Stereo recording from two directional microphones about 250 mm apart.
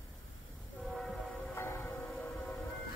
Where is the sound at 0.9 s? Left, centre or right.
Centre.